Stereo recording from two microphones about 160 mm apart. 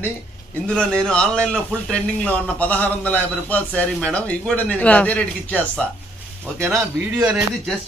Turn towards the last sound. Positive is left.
turn(degrees=-5)  # may be behind; listen again after turning